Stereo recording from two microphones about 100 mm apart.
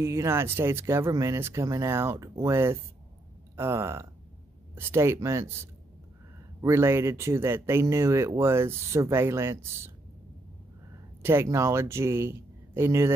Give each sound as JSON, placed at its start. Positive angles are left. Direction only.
{"t": 0.0, "sound": "speech", "side_deg": -30}
{"t": 11.4, "sound": "speech", "side_deg": -25}